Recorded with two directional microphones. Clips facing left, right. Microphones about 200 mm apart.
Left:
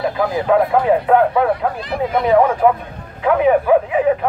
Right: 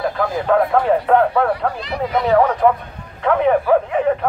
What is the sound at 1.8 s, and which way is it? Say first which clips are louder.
Speech: left 2 dB; 50° left (ahead or behind).